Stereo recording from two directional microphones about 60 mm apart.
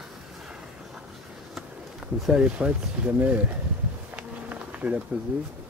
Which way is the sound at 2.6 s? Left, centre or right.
Right.